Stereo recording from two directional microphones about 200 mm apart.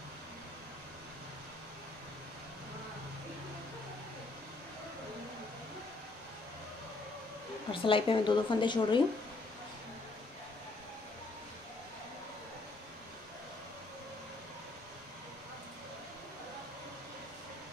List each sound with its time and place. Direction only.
7.7 s a woman's voice: 25° left (ahead or behind)